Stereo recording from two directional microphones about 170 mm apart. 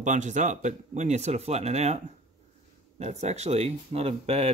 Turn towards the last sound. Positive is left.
turn(degrees=-40)  # may be behind; listen again after turning